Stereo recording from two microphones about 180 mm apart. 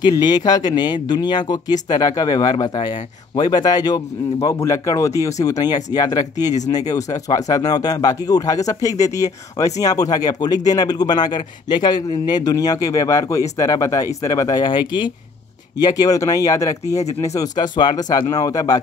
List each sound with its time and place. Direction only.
0.0 s speech: 25° left (ahead or behind)